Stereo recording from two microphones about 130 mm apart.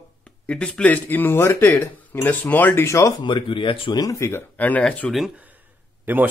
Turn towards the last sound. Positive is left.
turn(degrees=-15)  # may be behind; listen again after turning